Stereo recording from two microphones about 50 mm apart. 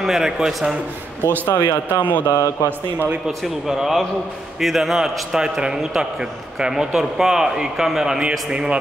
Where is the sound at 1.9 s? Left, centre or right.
Left.